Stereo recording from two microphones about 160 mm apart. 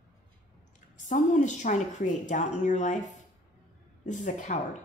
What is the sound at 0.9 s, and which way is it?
A woman's voice, 50° left (ahead or behind).